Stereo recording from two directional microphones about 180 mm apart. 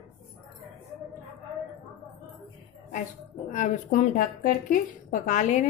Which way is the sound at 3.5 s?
45° left (ahead or behind).